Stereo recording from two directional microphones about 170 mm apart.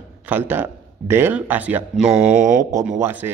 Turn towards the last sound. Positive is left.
turn(degrees=-10)  # may be behind; listen again after turning